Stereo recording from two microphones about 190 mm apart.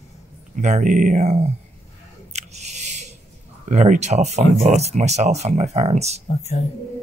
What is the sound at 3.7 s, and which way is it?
Speech, 40° right (ahead or behind).